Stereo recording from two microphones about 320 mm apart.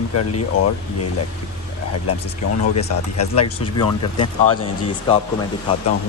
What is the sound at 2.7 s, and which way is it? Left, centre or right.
Speech, left.